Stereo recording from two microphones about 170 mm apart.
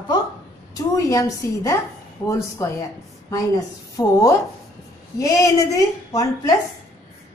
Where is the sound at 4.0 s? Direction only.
20° left (ahead or behind).